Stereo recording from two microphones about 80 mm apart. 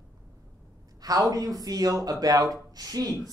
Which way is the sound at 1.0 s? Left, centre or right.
Right.